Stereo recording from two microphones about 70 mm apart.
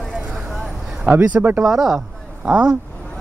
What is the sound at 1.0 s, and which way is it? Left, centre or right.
Speech, right.